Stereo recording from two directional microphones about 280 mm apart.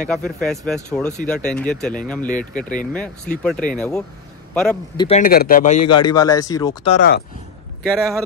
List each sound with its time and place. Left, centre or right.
0.1 s speech: centre
4.9 s speech: left
5.8 s a man's voice: left
6.0 s speech: centre
7.8 s speech: centre